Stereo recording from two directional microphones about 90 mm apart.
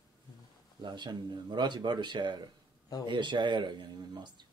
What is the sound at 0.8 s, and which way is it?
Speech, 55° right (ahead or behind).